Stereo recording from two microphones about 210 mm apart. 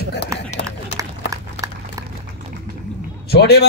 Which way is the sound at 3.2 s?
50° left (ahead or behind).